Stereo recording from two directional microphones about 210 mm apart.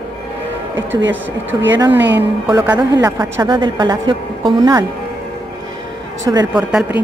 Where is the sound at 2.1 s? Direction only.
10° right (ahead or behind).